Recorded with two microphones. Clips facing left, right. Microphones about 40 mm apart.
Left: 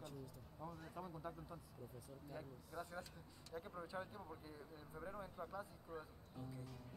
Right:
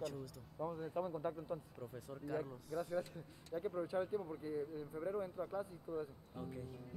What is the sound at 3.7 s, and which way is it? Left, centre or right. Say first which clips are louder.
Speech: right 13 dB; centre.